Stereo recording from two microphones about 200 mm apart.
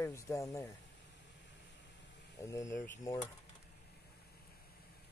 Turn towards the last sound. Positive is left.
turn(degrees=10)  # may be behind; listen again after turning